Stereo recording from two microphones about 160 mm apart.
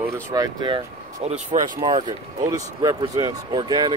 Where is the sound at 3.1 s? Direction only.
25° right (ahead or behind).